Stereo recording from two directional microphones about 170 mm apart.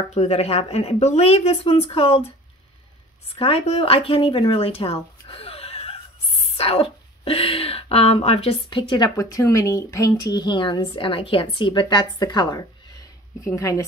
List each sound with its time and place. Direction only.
0.1 s speech: 40° left (ahead or behind)
3.3 s speech: 35° left (ahead or behind)
6.5 s a sound: 35° left (ahead or behind)
8.6 s speech: 25° left (ahead or behind)